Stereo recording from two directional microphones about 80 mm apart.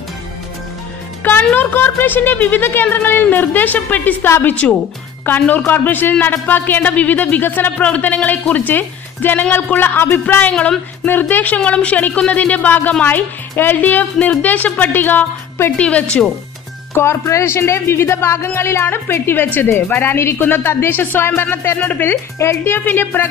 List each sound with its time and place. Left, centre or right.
1.4 s a man's voice: left
10.5 s speech: centre
11.1 s a man's voice: left
15.8 s speech: centre
16.9 s a man's voice: left